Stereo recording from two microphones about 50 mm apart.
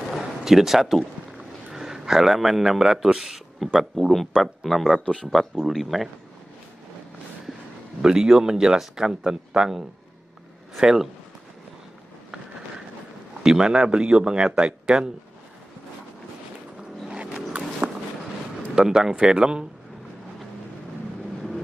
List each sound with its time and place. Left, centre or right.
0.1 s artillery fire: centre
1.7 s a man's voice: centre
8.0 s speech: centre
13.4 s speech: centre
17.5 s walk: right
18.8 s speech: centre